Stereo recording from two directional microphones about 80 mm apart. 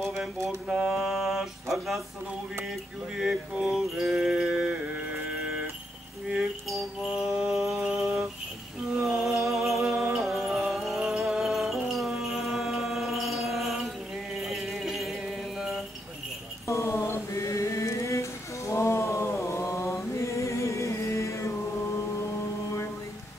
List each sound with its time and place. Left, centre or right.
0.0 s mantra: centre
0.8 s a sound: centre
3.2 s mantra: centre
6.3 s music: centre
16.6 s mantra: left